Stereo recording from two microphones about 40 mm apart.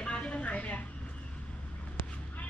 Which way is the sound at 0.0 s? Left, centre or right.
Left.